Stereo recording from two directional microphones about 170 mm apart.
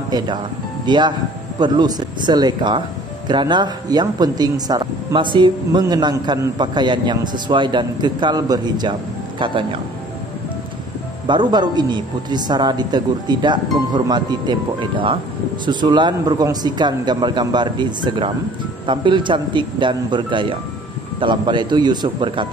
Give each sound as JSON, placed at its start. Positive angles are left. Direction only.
{"t": 0.8, "sound": "speech", "side_deg": -25}
{"t": 11.2, "sound": "speech", "side_deg": -25}